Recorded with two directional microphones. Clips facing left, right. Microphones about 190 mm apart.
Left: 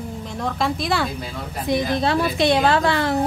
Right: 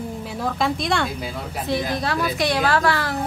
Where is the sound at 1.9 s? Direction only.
25° left (ahead or behind).